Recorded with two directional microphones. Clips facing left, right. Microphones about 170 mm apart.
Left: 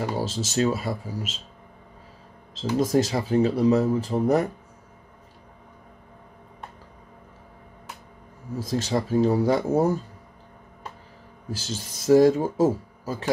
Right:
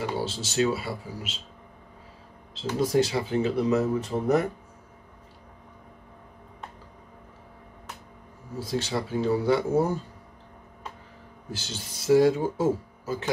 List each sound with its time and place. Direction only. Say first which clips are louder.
0.0 s speech: left 2 dB; 40° left (ahead or behind)
2.5 s speech: left 2 dB; 45° left (ahead or behind)
8.5 s speech: left 3 dB; 40° left (ahead or behind)
11.5 s speech: left 4 dB; 40° left (ahead or behind)